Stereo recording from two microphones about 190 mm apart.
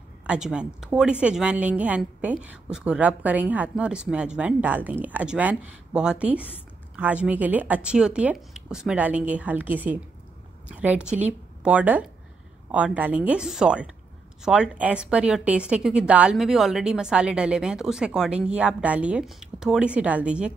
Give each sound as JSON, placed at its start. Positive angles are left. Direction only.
{"t": 0.3, "sound": "a woman's voice", "side_deg": -5}